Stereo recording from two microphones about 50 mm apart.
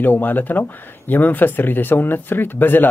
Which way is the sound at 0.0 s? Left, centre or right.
Left.